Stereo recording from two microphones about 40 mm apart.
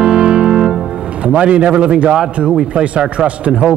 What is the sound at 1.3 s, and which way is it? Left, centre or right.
A man's voice, right.